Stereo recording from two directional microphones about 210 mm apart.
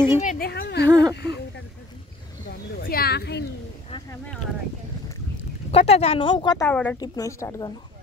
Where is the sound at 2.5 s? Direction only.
45° left (ahead or behind).